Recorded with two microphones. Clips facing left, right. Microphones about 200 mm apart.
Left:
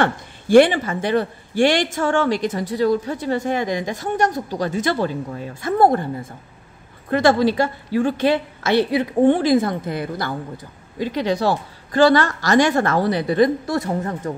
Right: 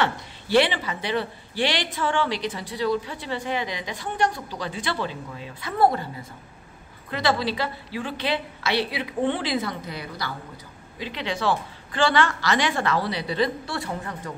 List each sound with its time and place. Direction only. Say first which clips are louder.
0.0 s speech: left 5 dB; 50° left (ahead or behind)
7.1 s speech: left 9 dB; 50° left (ahead or behind)